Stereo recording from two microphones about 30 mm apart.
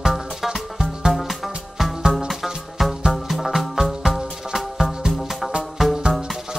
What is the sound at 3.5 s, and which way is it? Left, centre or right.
Music, centre.